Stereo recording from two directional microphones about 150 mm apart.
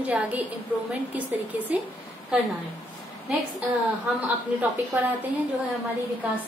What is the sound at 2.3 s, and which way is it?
Speech, 5° right (ahead or behind).